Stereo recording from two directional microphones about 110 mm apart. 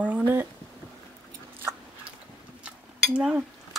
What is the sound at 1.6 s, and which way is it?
Biting, 20° right (ahead or behind).